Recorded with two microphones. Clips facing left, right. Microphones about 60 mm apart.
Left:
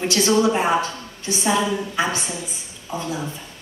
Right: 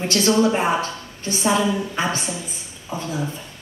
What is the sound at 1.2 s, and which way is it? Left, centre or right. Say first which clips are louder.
Speech: right 1 dB; right.